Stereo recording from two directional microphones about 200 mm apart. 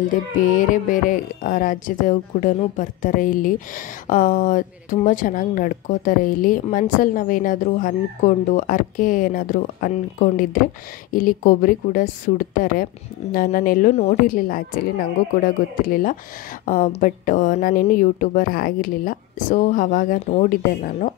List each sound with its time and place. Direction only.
0.4 s a woman's voice: 40° left (ahead or behind)